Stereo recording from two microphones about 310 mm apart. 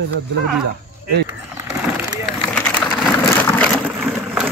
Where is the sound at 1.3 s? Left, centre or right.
Centre.